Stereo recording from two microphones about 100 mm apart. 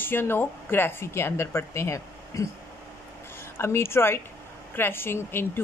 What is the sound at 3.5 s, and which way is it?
Speech, 25° left (ahead or behind).